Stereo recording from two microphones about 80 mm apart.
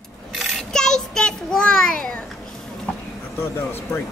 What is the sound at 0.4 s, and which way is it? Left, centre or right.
Child singing, centre.